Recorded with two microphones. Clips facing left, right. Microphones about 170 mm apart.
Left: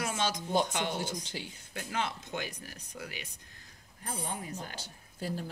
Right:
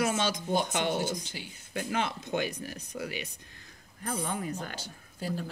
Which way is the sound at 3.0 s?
20° right (ahead or behind).